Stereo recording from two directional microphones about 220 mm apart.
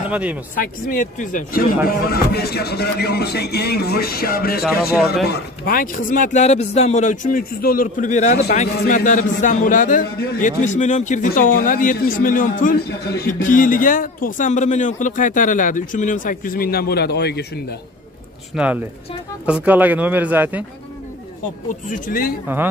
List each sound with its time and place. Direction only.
0.1 s speech: 5° right (ahead or behind)
0.6 s a man's voice: 35° left (ahead or behind)
18.5 s speech: centre (ahead or behind)
21.8 s a man's voice: 35° left (ahead or behind)